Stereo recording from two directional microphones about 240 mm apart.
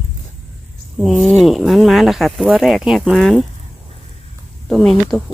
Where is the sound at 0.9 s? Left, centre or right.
Centre.